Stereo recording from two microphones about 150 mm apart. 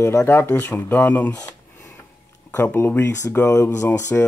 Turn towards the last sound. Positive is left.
turn(degrees=20)  # may be behind; listen again after turning